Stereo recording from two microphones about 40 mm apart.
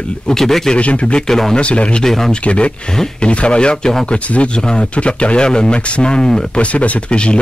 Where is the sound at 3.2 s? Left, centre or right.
Left.